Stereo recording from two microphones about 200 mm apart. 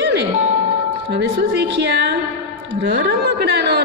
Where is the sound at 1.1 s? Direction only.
60° right (ahead or behind).